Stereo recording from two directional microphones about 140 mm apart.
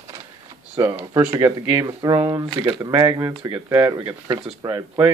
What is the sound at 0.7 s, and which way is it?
Speech, 20° right (ahead or behind).